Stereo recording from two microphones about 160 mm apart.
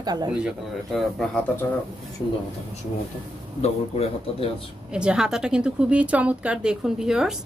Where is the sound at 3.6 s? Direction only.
40° left (ahead or behind).